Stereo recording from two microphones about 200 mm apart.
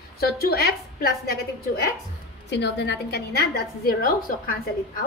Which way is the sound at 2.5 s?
60° left (ahead or behind).